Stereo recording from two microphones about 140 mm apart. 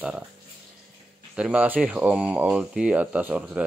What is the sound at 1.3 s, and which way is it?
Speech, 10° right (ahead or behind).